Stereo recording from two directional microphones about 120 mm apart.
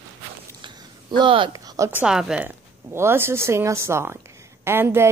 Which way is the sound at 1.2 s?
45° right (ahead or behind).